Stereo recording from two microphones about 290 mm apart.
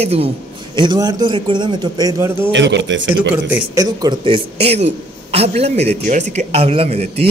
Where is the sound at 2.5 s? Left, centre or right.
Right.